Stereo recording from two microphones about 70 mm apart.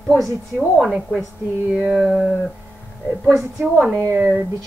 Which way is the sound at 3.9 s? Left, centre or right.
Right.